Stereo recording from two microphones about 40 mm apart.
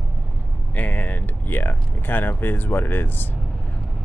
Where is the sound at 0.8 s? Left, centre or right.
Left.